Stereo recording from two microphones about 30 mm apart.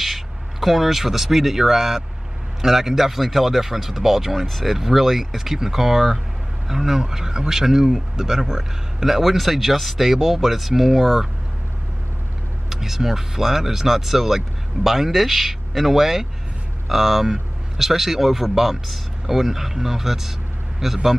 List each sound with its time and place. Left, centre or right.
0.0 s speech: centre
9.2 s speech: centre
12.6 s speech: centre